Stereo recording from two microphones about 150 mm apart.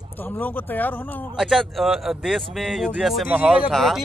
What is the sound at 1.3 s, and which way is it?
A man's voice, centre (ahead or behind).